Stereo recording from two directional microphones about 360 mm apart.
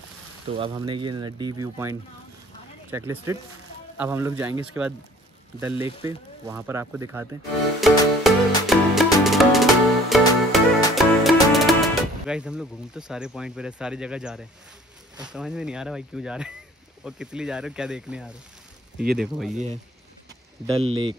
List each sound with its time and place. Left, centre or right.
0.5 s speech: centre
6.0 s speech: centre
7.8 s music: centre
15.1 s speech: centre
19.5 s speech: centre
20.8 s speech: centre